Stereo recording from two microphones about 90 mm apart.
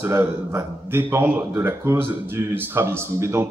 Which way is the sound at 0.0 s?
30° right (ahead or behind).